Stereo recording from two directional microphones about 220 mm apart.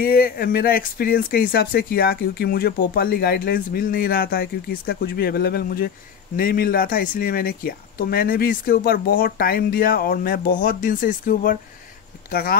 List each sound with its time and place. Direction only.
0.0 s speech: 40° left (ahead or behind)